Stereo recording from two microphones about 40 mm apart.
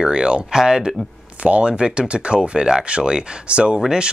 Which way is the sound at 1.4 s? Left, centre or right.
Right.